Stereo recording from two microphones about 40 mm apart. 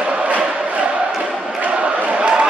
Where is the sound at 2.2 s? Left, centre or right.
Right.